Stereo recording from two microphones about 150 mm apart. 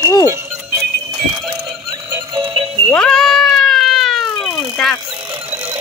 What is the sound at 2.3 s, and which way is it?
Music, 35° right (ahead or behind).